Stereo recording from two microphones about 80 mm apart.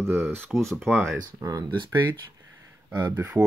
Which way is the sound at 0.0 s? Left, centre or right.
Right.